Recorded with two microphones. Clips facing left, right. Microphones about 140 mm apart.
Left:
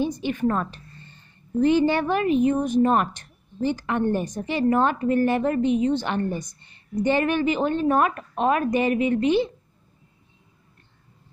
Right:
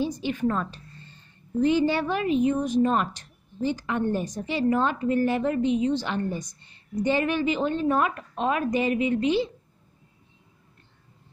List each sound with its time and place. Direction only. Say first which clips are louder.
0.2 s a woman's voice: left 2 dB; 55° left (ahead or behind)